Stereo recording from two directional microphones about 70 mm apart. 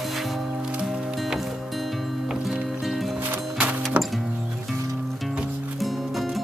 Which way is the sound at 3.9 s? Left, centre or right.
Centre.